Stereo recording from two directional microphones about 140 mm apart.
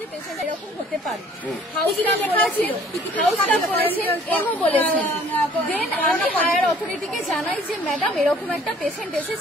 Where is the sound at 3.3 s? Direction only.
10° left (ahead or behind).